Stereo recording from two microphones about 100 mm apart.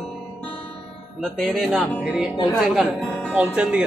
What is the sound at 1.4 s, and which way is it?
Speech, centre (ahead or behind).